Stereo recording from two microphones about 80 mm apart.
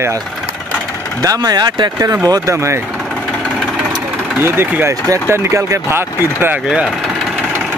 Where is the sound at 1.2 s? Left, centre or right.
Right.